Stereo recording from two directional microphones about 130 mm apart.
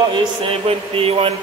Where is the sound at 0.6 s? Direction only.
50° right (ahead or behind).